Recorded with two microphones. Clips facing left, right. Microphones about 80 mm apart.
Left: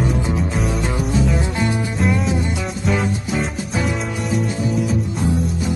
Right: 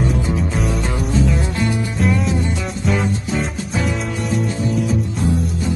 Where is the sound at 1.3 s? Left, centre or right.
Centre.